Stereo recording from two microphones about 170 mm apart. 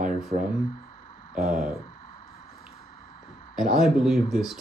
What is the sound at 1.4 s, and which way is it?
Speech, 55° right (ahead or behind).